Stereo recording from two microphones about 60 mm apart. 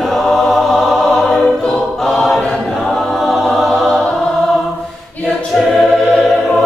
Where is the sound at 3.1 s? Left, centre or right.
Centre.